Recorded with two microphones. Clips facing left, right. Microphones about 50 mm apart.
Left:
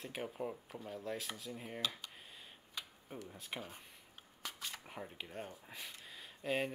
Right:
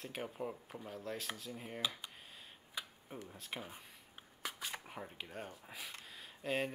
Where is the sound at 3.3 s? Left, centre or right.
Centre.